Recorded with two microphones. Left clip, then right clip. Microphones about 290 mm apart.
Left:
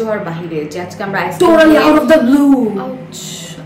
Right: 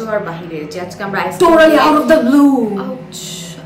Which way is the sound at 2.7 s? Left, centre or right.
Centre.